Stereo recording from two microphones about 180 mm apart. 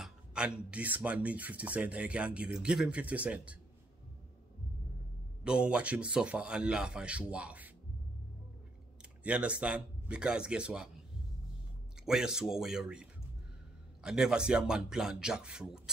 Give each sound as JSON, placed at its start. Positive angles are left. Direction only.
{"t": 0.0, "sound": "speech", "side_deg": -5}
{"t": 5.4, "sound": "speech", "side_deg": -5}
{"t": 9.2, "sound": "speech", "side_deg": -5}
{"t": 12.0, "sound": "speech", "side_deg": -5}